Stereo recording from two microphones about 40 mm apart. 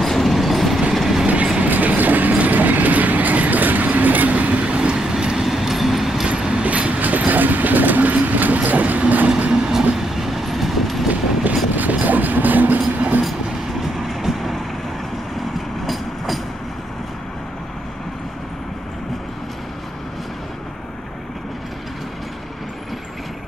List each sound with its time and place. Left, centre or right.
0.0 s train: centre
1.2 s train: right
4.6 s train: right
4.9 s train: centre
5.4 s vehicle: centre
6.2 s vehicle: right
6.6 s train: right
9.5 s train: centre
11.7 s a sound: right